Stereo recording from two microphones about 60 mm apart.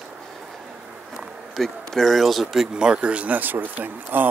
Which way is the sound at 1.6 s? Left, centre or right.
Centre.